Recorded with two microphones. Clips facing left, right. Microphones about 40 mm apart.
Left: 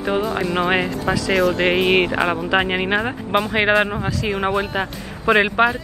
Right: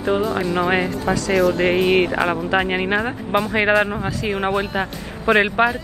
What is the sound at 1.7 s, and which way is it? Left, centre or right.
Speech, left.